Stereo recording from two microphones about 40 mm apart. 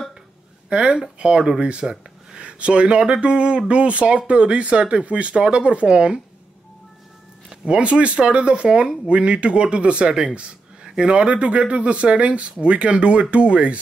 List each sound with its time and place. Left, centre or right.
0.7 s speech: right
7.4 s speech: right